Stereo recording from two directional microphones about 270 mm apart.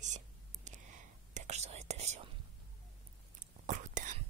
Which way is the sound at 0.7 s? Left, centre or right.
Right.